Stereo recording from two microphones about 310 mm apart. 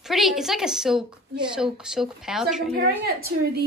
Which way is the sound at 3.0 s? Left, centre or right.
Right.